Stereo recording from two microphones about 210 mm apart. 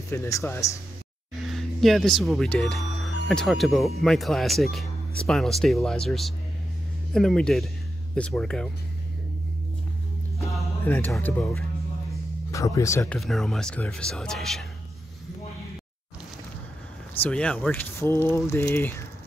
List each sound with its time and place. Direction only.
0.1 s speech: 10° left (ahead or behind)
1.4 s speech: centre (ahead or behind)
10.9 s speech: 10° left (ahead or behind)
13.2 s speech: centre (ahead or behind)
17.2 s speech: 5° left (ahead or behind)